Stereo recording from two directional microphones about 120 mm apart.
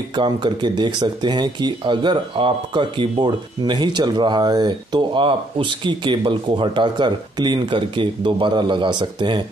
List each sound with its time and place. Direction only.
0.1 s speech: 40° right (ahead or behind)